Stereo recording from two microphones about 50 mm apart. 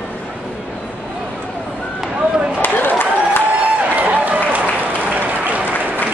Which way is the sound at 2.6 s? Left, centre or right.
Left.